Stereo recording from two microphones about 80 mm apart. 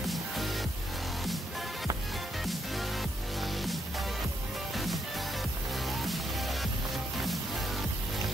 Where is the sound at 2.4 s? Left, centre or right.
Centre.